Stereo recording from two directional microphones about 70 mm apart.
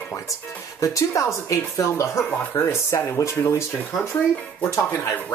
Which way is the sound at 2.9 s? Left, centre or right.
Left.